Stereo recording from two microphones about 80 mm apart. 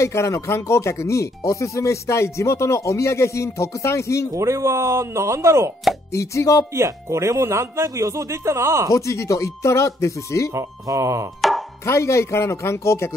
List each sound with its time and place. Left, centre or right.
0.0 s speech: left
4.3 s speech: right
6.1 s speech: left
6.7 s speech: right
8.9 s speech: left
10.5 s speech: right
11.8 s speech: left